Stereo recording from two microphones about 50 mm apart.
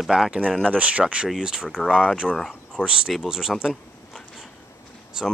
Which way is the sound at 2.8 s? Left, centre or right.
Centre.